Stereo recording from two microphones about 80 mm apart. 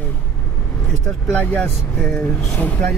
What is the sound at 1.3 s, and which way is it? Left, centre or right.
Speech, left.